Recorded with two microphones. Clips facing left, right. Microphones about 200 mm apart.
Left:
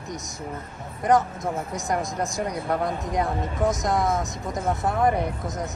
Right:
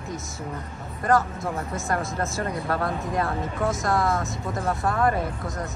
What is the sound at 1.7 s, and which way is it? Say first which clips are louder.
Speech: even; 15° left (ahead or behind).